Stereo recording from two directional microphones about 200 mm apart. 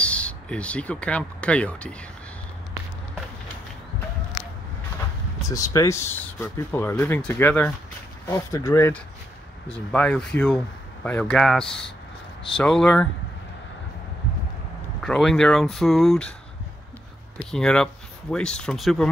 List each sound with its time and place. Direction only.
0.0 s speech: 5° left (ahead or behind)
5.4 s speech: 15° left (ahead or behind)
15.0 s speech: centre (ahead or behind)
17.5 s speech: 5° left (ahead or behind)